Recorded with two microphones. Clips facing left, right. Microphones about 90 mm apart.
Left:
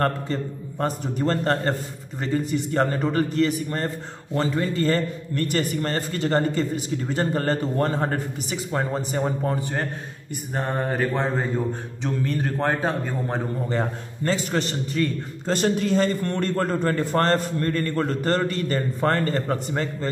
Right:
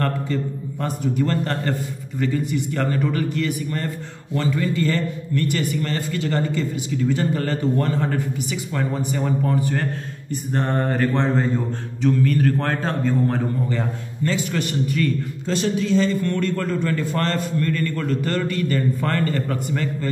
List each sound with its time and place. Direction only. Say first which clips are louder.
0.0 s a man's voice: even; 35° left (ahead or behind)
10.5 s mantra: right 3 dB; 10° left (ahead or behind)
12.0 s a man's voice: right 7 dB; 20° left (ahead or behind)
13.7 s a man's voice: even; 35° left (ahead or behind)
15.4 s a man's voice: left 1 dB; 45° left (ahead or behind)